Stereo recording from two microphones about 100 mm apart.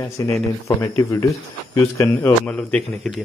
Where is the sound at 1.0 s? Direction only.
35° left (ahead or behind).